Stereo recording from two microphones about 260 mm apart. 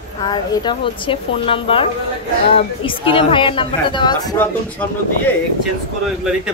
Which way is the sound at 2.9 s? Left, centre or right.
Centre.